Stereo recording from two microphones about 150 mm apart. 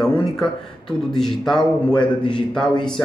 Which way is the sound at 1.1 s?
5° left (ahead or behind).